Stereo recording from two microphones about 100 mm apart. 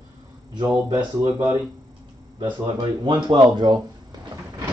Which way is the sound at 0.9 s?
50° right (ahead or behind).